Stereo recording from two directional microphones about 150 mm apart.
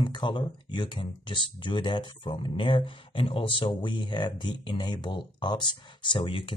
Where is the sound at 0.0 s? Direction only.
30° left (ahead or behind).